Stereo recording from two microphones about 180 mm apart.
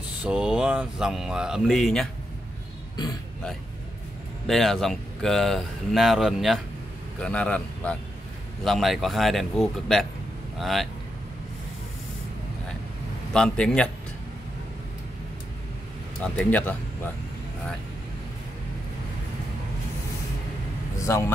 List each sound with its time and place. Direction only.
0.2 s speech: 5° right (ahead or behind)
4.5 s speech: centre (ahead or behind)
13.3 s speech: 5° left (ahead or behind)
16.3 s speech: 10° left (ahead or behind)
21.0 s speech: 15° left (ahead or behind)